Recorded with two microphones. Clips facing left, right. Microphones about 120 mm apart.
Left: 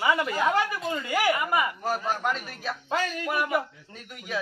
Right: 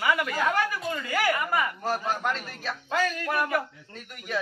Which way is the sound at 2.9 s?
15° left (ahead or behind).